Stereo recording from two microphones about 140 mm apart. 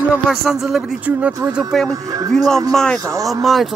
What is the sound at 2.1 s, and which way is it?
Speech, 25° right (ahead or behind).